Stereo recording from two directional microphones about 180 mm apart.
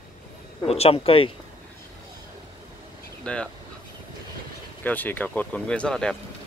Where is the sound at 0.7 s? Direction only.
35° left (ahead or behind).